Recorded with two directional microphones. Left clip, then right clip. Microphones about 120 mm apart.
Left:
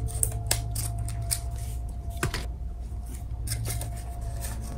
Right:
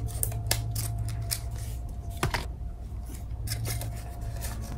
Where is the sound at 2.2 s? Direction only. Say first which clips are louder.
Right 2 dB; 50° right (ahead or behind).